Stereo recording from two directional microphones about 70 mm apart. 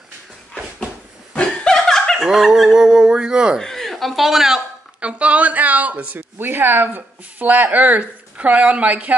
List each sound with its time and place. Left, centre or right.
1.3 s laughter: centre
2.2 s a sound: centre
3.5 s speech: centre
5.0 s speech: centre